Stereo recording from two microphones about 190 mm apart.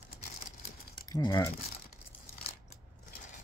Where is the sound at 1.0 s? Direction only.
20° left (ahead or behind).